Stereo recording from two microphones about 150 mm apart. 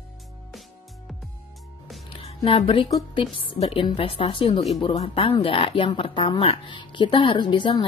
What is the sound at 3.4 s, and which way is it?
Speech, 35° left (ahead or behind).